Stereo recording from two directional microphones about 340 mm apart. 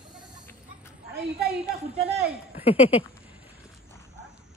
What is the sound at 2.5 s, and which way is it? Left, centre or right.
Speech, centre.